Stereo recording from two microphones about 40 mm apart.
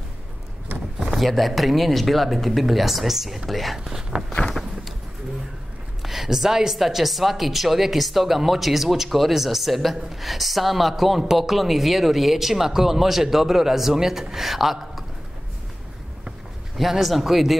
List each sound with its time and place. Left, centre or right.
0.9 s speech: centre
4.3 s a sound: left
6.0 s a man's voice: centre
16.7 s speech: centre